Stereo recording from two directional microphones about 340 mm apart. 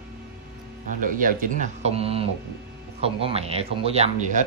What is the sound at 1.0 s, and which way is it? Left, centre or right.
Speech, right.